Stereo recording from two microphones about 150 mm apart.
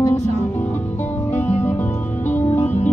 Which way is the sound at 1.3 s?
10° left (ahead or behind).